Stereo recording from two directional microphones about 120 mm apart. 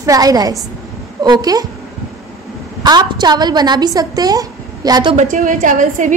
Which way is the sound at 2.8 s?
35° right (ahead or behind).